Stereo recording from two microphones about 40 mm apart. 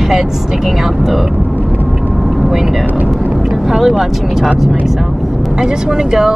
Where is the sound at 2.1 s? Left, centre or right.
Centre.